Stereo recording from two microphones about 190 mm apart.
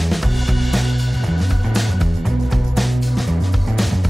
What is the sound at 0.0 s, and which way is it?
Music, centre (ahead or behind).